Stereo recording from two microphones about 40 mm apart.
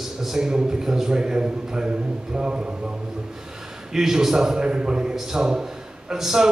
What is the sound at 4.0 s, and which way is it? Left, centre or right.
Speech, centre.